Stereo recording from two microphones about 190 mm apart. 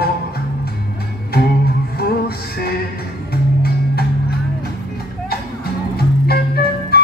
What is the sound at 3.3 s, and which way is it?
Music, 55° left (ahead or behind).